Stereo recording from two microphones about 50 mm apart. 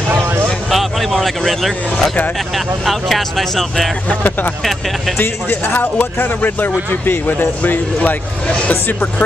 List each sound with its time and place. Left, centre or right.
0.7 s speech: centre
4.1 s speech: left
5.1 s speech: left
8.5 s speech: left